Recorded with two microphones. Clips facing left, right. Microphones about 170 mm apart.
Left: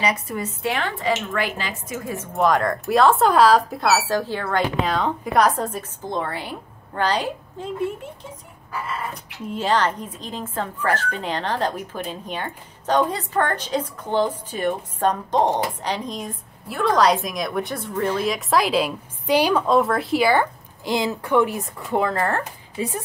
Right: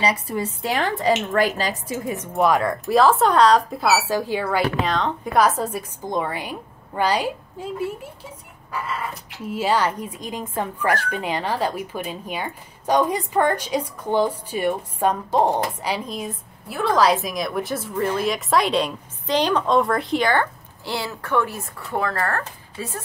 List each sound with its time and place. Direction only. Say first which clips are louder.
0.3 s a woman's voice: right 1 dB; 35° right (ahead or behind)
2.0 s a woman's voice: right 2 dB; 20° right (ahead or behind)
2.3 s a woman's voice: even; 5° right (ahead or behind)
9.5 s a woman's voice: even; 10° right (ahead or behind); by 23.0 s 20° left (ahead or behind)